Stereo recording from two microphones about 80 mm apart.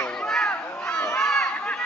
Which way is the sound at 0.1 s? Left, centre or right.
Centre.